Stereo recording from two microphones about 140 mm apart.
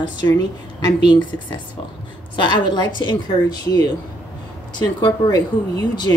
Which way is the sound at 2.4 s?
30° left (ahead or behind).